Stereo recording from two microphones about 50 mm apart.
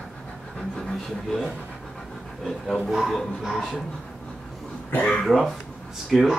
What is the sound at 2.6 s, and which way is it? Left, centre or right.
Speech, centre.